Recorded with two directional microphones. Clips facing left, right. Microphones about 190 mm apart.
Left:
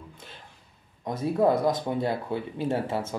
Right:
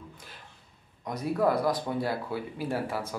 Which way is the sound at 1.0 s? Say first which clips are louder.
Left 3 dB; 25° left (ahead or behind).